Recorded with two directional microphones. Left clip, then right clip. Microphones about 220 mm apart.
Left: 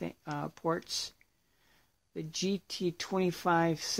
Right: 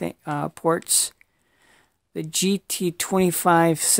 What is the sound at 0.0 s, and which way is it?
Speech, 45° right (ahead or behind).